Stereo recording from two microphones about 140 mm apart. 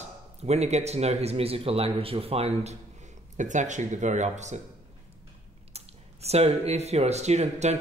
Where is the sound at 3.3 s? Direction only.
60° right (ahead or behind).